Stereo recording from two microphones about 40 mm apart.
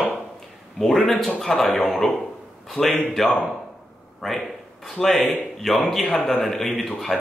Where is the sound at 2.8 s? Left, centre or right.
Left.